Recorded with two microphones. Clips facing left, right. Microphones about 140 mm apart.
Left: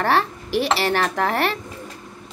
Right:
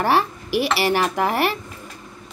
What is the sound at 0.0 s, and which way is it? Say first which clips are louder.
A woman's voice: right 1 dB; 10° right (ahead or behind).